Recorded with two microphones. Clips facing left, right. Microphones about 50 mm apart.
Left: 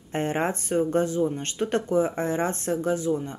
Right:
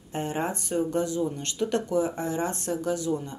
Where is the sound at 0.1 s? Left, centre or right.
Left.